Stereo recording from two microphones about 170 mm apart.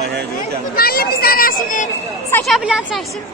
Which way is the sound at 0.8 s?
60° left (ahead or behind).